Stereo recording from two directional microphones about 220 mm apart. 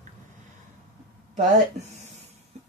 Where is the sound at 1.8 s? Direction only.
30° right (ahead or behind).